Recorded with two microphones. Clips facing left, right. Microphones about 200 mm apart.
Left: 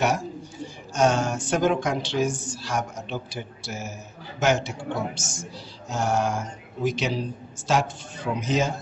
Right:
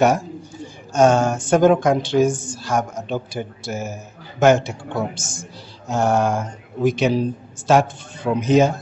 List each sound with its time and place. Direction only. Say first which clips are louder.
0.9 s speech: right 7 dB; 50° right (ahead or behind)